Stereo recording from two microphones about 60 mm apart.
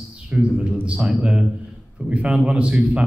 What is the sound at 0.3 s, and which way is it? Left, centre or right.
Speech, centre.